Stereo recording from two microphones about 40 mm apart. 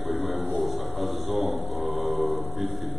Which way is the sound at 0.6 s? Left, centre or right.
Centre.